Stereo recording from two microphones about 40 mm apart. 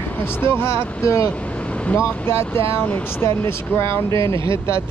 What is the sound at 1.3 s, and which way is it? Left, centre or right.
Vehicle, left.